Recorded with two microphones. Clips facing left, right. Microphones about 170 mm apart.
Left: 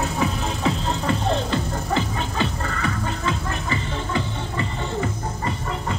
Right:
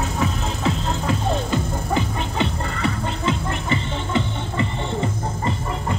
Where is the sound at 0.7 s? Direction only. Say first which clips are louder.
Even; 5° right (ahead or behind); by 5.5 s 25° right (ahead or behind).